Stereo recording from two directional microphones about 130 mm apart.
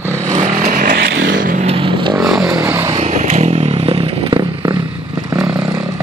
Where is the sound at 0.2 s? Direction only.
70° right (ahead or behind); by 1.7 s 90° right.